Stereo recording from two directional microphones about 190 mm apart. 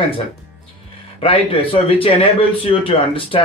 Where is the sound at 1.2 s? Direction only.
30° left (ahead or behind).